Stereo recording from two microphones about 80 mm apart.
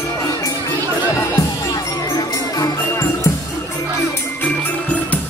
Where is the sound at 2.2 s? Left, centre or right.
Left.